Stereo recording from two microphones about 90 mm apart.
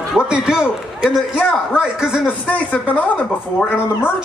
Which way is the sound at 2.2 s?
15° left (ahead or behind).